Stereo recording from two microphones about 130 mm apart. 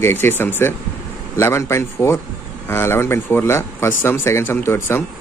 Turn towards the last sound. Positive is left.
turn(degrees=20)  # may be behind; listen again after turning